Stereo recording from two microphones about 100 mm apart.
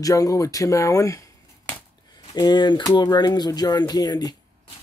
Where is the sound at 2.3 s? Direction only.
45° left (ahead or behind).